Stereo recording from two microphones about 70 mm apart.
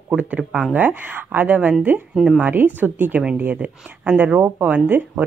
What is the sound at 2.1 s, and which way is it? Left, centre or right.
Speech, centre.